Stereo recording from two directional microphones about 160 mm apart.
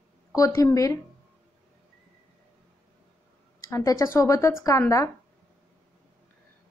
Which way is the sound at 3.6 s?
20° left (ahead or behind).